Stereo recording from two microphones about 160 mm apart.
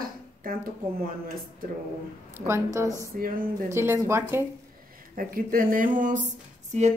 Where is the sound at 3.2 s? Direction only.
60° right (ahead or behind).